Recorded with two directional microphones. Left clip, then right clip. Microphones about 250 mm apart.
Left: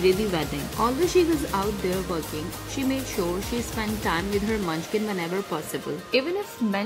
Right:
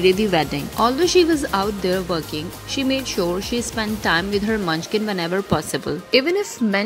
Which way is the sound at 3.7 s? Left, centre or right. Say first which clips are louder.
Right 7 dB; centre.